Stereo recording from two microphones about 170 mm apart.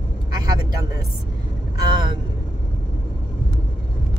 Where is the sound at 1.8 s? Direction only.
25° right (ahead or behind).